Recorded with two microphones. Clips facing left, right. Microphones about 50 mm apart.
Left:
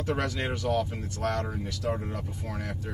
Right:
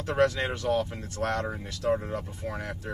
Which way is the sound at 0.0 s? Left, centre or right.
Centre.